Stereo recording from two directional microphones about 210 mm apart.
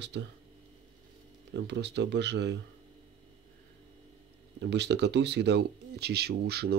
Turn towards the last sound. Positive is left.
turn(degrees=-50)  # may be behind; listen again after turning